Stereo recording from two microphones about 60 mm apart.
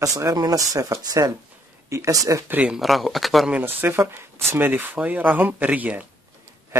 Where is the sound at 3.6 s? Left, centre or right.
Right.